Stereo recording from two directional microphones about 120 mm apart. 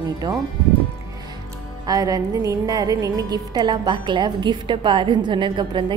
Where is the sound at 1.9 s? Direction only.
30° right (ahead or behind).